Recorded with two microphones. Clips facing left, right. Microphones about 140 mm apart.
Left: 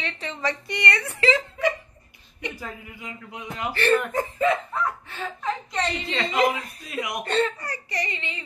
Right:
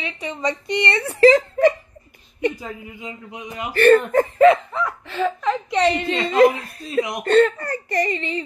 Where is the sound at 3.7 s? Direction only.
55° right (ahead or behind).